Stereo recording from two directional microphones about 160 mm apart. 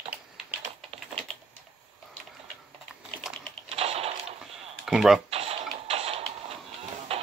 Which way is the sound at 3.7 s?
40° right (ahead or behind).